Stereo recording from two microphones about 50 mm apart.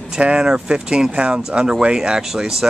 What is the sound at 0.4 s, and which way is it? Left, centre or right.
A man's voice, centre.